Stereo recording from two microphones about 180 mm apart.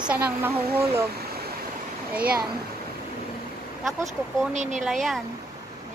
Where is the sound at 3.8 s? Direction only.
Centre (ahead or behind).